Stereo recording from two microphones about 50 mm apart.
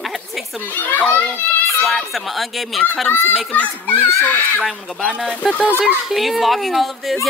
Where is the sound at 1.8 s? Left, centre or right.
Centre.